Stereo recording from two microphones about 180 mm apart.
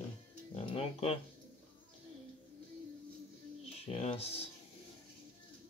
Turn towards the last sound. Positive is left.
turn(degrees=35)  # may be behind; listen again after turning